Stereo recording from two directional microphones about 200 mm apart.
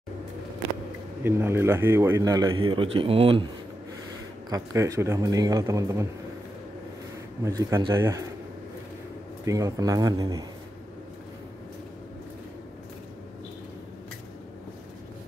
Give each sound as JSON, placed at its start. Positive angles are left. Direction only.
{"t": 1.2, "sound": "a man's voice", "side_deg": -10}
{"t": 4.5, "sound": "a man's voice", "side_deg": -15}
{"t": 7.4, "sound": "a man's voice", "side_deg": -15}
{"t": 9.4, "sound": "a man's voice", "side_deg": -15}